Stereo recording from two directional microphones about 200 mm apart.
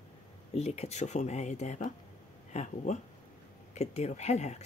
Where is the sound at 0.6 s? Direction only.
30° left (ahead or behind).